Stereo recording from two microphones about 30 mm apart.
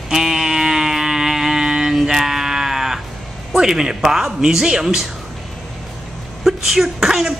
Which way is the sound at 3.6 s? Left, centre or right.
Centre.